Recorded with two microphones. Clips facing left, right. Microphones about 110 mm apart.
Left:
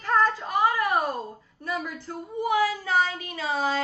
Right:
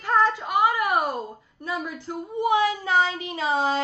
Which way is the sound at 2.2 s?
20° right (ahead or behind).